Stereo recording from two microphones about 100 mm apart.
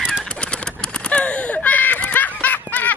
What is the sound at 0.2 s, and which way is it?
Bird, 10° left (ahead or behind).